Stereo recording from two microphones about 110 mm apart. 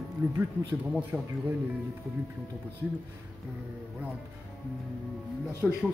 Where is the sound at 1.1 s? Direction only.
Centre (ahead or behind).